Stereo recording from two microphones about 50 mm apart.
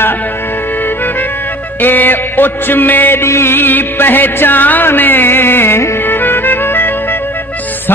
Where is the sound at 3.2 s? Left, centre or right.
Left.